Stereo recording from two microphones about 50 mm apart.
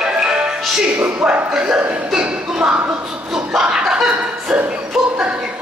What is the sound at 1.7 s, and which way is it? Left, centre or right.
Speech, centre.